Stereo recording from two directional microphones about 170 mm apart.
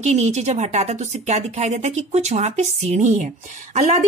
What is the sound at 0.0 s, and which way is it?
A woman's voice, 40° right (ahead or behind).